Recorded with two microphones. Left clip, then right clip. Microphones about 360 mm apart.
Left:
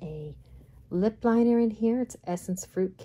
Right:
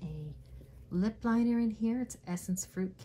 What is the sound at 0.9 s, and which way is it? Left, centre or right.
Speech, centre.